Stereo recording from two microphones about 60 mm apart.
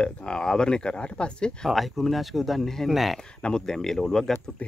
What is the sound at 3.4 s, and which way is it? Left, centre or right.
Speech, centre.